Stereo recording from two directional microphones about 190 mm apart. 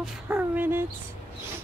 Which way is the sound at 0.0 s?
10° right (ahead or behind).